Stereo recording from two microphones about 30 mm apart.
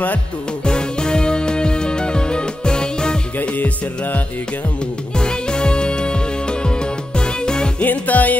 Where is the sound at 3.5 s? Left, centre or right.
Left.